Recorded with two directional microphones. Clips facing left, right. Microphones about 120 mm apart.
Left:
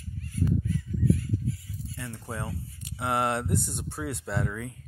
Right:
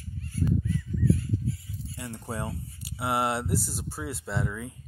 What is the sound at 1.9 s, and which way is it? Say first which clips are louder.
Speech: right 2 dB; 20° right (ahead or behind).